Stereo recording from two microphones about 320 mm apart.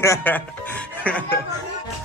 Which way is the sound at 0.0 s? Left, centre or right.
Centre.